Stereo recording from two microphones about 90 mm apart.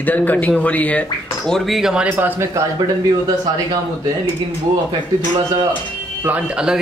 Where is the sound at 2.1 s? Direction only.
20° right (ahead or behind).